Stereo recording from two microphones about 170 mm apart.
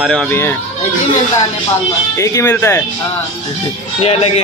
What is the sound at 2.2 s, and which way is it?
Speech, 15° left (ahead or behind).